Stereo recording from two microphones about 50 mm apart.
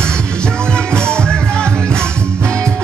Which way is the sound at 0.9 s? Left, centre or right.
Centre.